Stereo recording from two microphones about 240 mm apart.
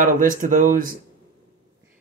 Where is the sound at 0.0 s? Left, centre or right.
Right.